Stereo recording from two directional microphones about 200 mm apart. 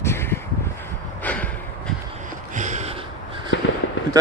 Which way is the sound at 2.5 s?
35° right (ahead or behind).